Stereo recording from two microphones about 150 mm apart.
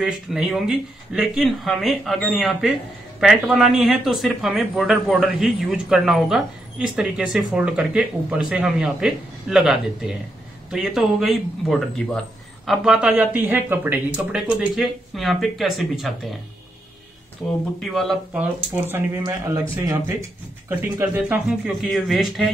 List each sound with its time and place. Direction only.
0.0 s speech: 5° right (ahead or behind)
17.9 s speech: 5° left (ahead or behind)
18.3 s speech: 10° right (ahead or behind)
19.2 s a man's voice: 25° right (ahead or behind)
20.8 s speech: 10° right (ahead or behind)